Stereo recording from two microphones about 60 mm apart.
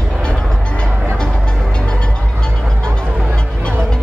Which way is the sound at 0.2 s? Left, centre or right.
Centre.